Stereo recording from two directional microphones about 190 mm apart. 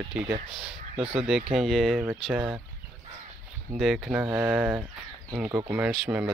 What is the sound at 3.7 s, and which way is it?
Speech, centre (ahead or behind).